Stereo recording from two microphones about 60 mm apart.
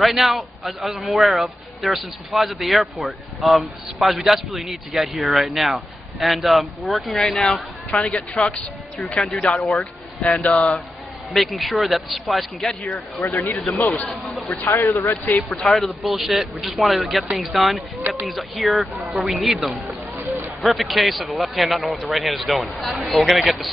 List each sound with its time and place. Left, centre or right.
0.0 s speech: centre
8.4 s speech: centre
10.5 s speech: centre
13.3 s speech: left
14.2 s speech: centre
14.6 s speech: left
14.9 s a man's voice: left
15.6 s speech: centre
20.2 s a sound: right
20.6 s speech: centre